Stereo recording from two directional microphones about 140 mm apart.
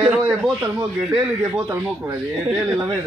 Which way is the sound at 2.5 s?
10° right (ahead or behind).